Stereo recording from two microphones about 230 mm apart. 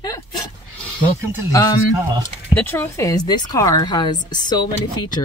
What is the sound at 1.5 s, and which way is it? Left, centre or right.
Speech, centre.